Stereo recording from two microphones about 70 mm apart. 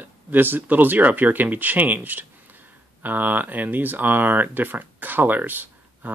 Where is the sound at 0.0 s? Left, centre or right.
Right.